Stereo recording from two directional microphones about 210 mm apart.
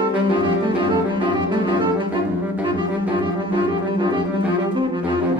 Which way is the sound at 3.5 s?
20° right (ahead or behind).